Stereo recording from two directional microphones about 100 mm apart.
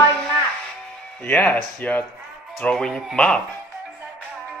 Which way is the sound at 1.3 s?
15° left (ahead or behind).